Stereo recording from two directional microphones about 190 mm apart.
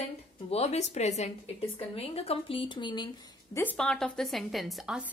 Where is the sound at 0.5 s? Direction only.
35° left (ahead or behind).